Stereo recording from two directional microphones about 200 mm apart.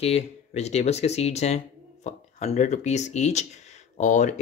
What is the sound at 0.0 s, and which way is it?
Speech, 30° left (ahead or behind).